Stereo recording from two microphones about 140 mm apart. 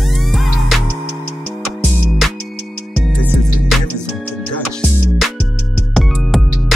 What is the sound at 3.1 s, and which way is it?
Music, 10° left (ahead or behind).